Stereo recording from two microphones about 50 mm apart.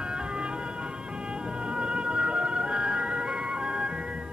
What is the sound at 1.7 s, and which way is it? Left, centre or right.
Music, centre.